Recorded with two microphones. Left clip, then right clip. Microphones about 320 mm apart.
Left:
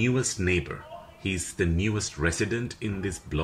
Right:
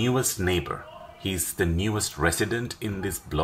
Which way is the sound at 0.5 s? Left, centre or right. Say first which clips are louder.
Right 1 dB; centre.